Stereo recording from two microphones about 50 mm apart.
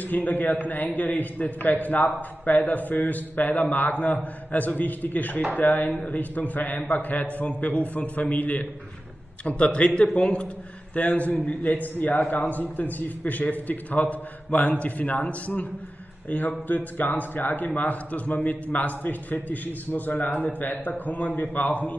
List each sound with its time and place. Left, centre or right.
0.0 s a man's voice: left